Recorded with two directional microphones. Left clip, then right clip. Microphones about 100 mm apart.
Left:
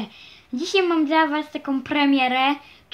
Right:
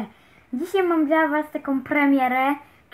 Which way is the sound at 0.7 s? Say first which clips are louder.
Left 1 dB; 25° right (ahead or behind).